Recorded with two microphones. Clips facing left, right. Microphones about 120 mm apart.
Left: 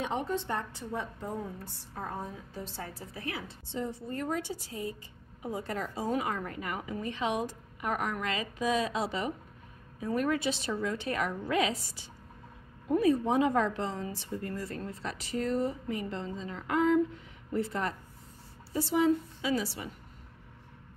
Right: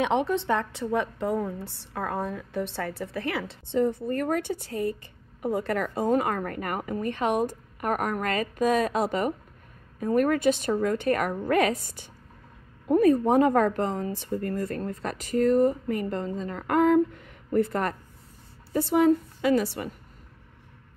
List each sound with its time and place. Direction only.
0.0 s a woman's voice: 80° right; by 19.9 s 55° right (ahead or behind)